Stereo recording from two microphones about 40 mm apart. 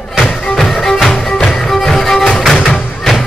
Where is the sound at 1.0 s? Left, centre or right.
Centre.